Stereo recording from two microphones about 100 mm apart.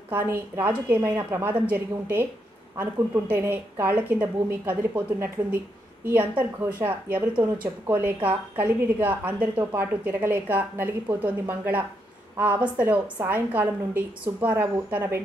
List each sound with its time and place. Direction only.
0.1 s a woman's voice: 20° right (ahead or behind)